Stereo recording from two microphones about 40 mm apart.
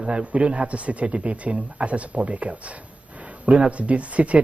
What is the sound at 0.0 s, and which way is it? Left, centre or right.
Speech, right.